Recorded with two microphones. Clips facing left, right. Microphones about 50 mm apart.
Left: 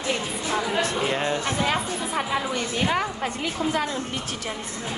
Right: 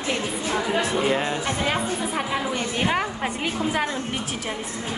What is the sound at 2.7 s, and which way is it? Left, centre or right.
Speech, centre.